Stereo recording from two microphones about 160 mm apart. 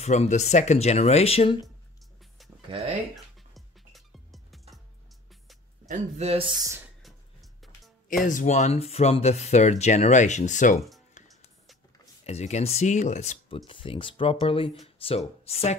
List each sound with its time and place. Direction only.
0.0 s speech: 45° left (ahead or behind)
2.7 s speech: 35° right (ahead or behind)
3.5 s music: centre (ahead or behind)
5.9 s speech: 45° right (ahead or behind)
8.2 s speech: 55° left (ahead or behind)
11.2 s music: 50° left (ahead or behind)
12.3 s speech: 45° left (ahead or behind)
13.7 s speech: 30° left (ahead or behind)